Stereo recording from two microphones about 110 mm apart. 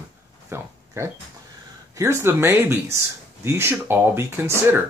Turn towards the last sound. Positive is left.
turn(degrees=-20)  # may be behind; listen again after turning